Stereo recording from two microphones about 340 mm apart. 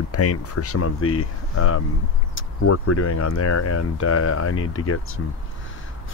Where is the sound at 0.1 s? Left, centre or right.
Left.